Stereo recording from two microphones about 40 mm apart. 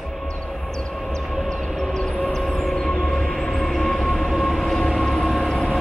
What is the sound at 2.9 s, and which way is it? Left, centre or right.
Train, left.